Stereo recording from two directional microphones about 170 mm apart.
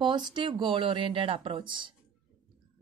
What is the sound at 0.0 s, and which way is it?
Speech, 25° right (ahead or behind).